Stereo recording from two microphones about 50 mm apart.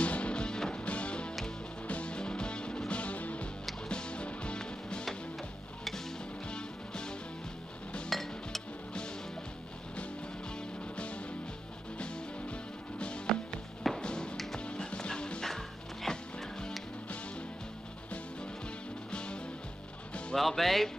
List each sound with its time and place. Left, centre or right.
0.0 s music: left
6.5 s music: centre
8.1 s music: centre
11.0 s music: left
13.3 s music: centre
14.0 s music: centre
14.3 s music: centre
14.6 s music: left
15.4 s music: centre
19.1 s music: centre
20.3 s speech: centre